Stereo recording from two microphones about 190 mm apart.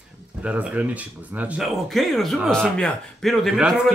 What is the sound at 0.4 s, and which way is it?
Speech, 5° right (ahead or behind).